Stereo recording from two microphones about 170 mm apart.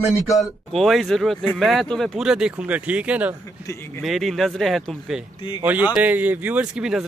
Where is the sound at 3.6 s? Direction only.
15° left (ahead or behind).